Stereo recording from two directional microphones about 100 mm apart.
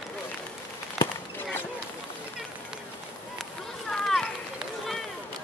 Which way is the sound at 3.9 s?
5° left (ahead or behind).